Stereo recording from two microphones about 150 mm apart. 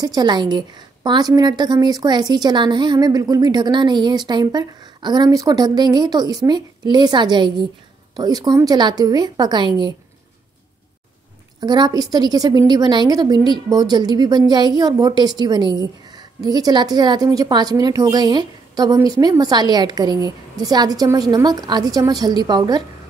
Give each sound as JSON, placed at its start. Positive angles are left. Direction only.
{"t": 0.0, "sound": "a woman's voice", "side_deg": -25}
{"t": 11.6, "sound": "a woman's voice", "side_deg": -30}